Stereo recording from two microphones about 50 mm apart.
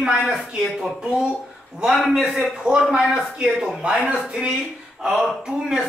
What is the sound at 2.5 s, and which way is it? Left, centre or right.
Speech, centre.